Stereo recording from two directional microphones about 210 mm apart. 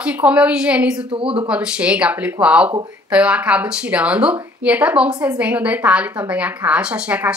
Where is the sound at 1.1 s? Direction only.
25° right (ahead or behind).